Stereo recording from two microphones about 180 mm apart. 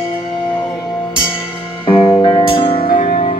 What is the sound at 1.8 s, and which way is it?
Music, 25° left (ahead or behind).